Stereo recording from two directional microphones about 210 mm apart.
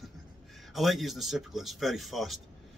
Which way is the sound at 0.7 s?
Centre (ahead or behind).